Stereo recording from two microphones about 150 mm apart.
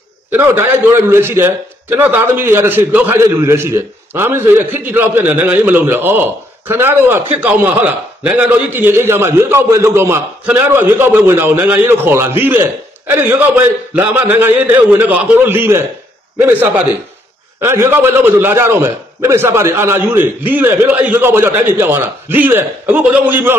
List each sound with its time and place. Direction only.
0.3 s a man's voice: 15° right (ahead or behind)